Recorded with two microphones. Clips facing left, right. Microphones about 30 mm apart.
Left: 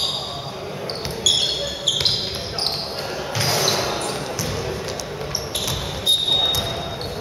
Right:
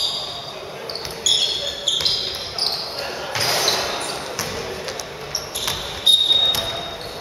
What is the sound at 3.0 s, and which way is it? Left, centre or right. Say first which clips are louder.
Basketball bounce: even; centre.